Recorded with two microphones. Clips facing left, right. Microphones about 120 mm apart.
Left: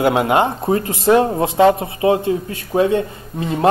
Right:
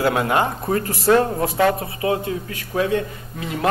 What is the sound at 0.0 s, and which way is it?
A man's voice, 25° left (ahead or behind).